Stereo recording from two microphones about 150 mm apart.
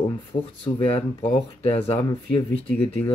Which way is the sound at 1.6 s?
40° left (ahead or behind).